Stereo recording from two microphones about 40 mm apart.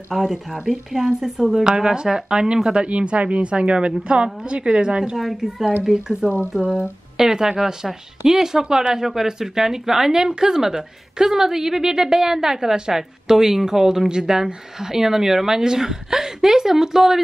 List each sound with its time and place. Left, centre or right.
0.1 s a woman's voice: centre; by 5.1 s right
5.1 s a woman's voice: centre
5.9 s speech: centre